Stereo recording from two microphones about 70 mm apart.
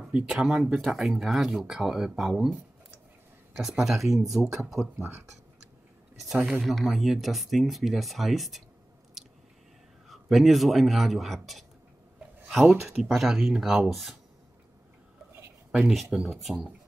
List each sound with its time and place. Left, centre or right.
0.1 s speech: centre
3.5 s speech: centre
5.0 s speech: right
6.2 s speech: centre
9.2 s chewing: centre
10.0 s speech: centre
12.6 s speech: centre
13.1 s speech: centre
15.7 s speech: centre